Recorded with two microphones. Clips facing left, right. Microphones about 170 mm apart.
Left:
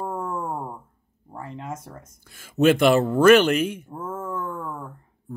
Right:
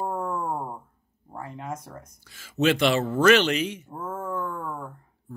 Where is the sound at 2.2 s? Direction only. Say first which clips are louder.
Left 5 dB; 55° left (ahead or behind).